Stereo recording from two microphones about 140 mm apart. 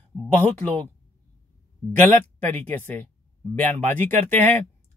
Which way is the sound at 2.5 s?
15° left (ahead or behind).